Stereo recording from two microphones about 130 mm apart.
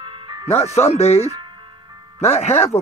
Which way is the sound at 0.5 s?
55° left (ahead or behind).